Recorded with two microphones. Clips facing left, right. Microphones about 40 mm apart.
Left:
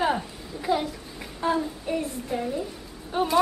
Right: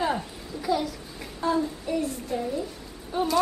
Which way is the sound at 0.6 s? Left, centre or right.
Left.